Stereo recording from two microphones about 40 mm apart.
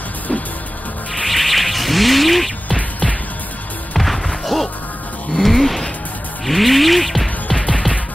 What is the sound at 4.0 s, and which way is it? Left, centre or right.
Music, centre.